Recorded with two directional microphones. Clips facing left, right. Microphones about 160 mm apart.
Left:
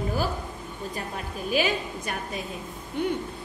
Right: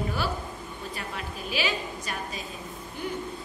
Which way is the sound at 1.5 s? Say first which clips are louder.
Left 5 dB; 50° left (ahead or behind).